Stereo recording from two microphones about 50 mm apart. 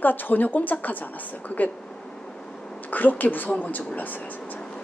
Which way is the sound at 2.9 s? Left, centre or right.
Left.